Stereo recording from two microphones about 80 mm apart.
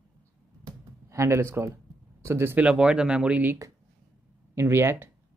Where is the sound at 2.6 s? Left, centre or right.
Centre.